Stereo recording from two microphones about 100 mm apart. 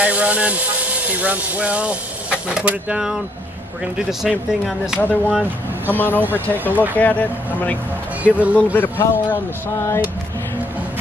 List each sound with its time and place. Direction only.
0.0 s speech: 15° right (ahead or behind)
4.2 s speech: 5° right (ahead or behind)
5.0 s speech: 15° left (ahead or behind)
8.2 s speech: 15° right (ahead or behind)
8.7 s speech: 20° left (ahead or behind)